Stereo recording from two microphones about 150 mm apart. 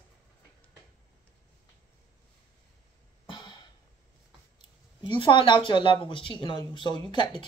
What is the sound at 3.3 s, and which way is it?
Music, 30° left (ahead or behind).